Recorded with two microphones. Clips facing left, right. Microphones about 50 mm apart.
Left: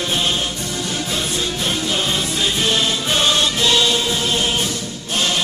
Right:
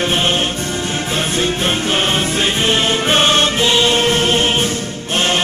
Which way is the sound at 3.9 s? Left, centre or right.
Right.